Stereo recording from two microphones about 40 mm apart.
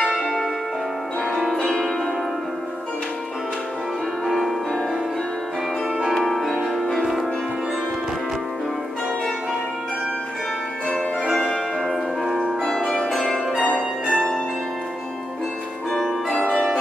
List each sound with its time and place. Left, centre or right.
0.2 s change ringing: centre
6.1 s music: centre
11.3 s music: centre
12.6 s change ringing: centre